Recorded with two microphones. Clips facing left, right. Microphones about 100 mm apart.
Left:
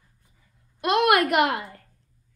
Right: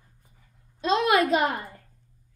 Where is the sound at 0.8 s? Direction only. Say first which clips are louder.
Left 2 dB; 65° left (ahead or behind).